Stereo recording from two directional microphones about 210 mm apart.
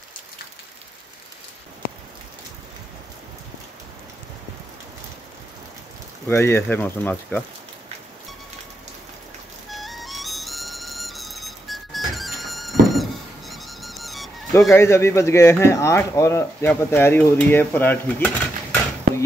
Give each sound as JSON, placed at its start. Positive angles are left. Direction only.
{"t": 6.2, "sound": "speech", "side_deg": 10}
{"t": 9.7, "sound": "music", "side_deg": 0}
{"t": 14.7, "sound": "speech", "side_deg": 10}